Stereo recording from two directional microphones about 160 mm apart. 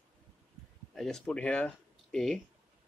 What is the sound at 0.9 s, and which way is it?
Speech, 5° left (ahead or behind).